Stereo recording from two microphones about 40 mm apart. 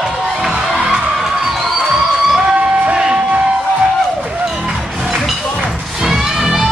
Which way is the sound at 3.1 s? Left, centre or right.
Right.